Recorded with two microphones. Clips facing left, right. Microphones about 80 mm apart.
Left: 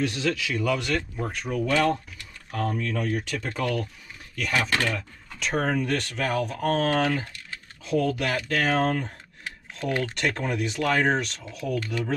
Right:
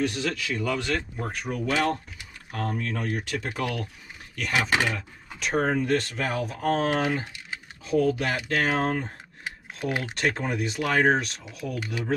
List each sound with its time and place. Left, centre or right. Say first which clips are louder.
0.6 s speech: left 2 dB; right
1.3 s speech: left 2 dB; centre
2.1 s a sound: left 2 dB; centre
2.8 s speech: left 2 dB; right
3.1 s speech: left 1 dB; centre